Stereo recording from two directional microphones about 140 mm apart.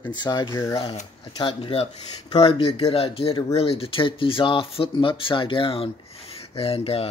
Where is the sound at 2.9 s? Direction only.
40° left (ahead or behind).